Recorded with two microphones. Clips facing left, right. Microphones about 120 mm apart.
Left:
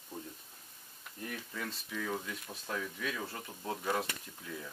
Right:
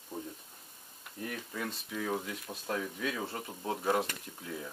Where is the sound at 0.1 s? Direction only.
15° right (ahead or behind).